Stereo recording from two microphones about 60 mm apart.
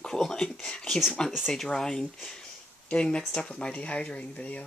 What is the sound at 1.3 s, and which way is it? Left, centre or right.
Speech, centre.